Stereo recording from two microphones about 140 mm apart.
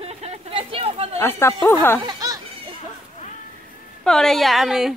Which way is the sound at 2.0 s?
25° right (ahead or behind).